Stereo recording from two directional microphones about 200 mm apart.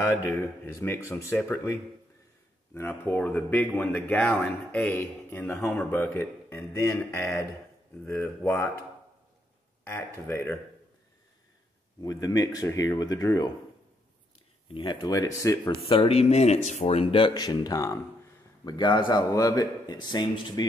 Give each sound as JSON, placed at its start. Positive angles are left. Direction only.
{"t": 0.7, "sound": "speech", "side_deg": 15}
{"t": 10.2, "sound": "speech", "side_deg": 10}
{"t": 12.0, "sound": "speech", "side_deg": 20}
{"t": 14.7, "sound": "speech", "side_deg": 25}
{"t": 15.8, "sound": "speech", "side_deg": 25}